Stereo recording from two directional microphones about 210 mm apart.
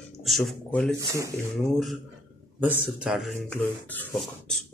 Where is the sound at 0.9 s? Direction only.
15° right (ahead or behind).